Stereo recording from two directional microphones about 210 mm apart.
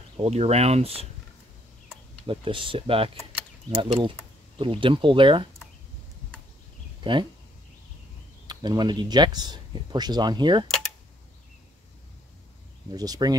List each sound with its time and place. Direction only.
0.2 s speech: 30° right (ahead or behind)
2.2 s speech: 25° right (ahead or behind)
7.0 s speech: 20° right (ahead or behind)
8.5 s speech: 20° right (ahead or behind)
12.9 s speech: 20° right (ahead or behind)